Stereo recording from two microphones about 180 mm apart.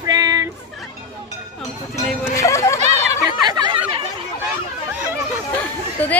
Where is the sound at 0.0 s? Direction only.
20° right (ahead or behind).